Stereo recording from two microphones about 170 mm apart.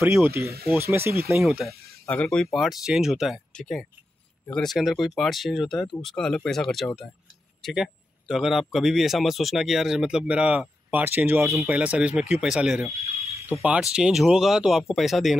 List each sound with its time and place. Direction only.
0.0 s speech: 15° right (ahead or behind)
1.4 s speech: centre (ahead or behind)
11.4 s speech: centre (ahead or behind)
13.0 s a sound: 40° left (ahead or behind)
13.5 s speech: 5° right (ahead or behind)